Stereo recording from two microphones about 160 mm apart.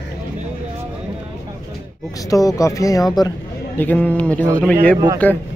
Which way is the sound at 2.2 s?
20° left (ahead or behind).